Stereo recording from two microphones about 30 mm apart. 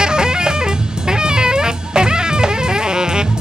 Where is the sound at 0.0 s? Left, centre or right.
Right.